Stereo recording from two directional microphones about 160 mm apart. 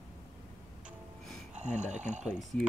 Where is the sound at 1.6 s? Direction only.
45° right (ahead or behind).